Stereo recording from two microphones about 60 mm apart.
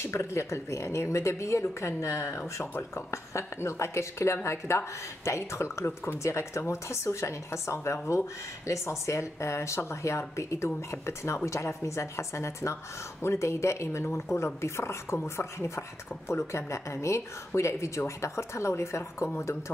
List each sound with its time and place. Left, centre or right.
0.0 s a woman's voice: left